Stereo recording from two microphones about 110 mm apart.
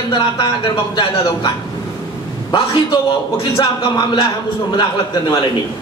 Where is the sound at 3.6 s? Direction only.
40° left (ahead or behind).